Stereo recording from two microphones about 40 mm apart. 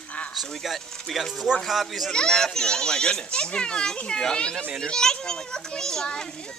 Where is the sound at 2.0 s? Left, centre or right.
Centre.